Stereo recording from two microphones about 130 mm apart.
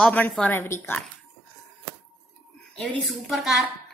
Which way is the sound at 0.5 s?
15° left (ahead or behind).